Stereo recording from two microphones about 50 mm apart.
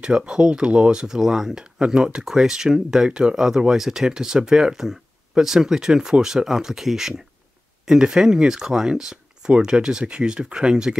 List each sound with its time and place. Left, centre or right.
0.0 s speech: centre